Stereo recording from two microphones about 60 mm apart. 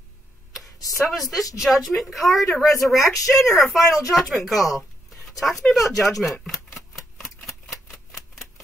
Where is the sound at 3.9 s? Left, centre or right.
Centre.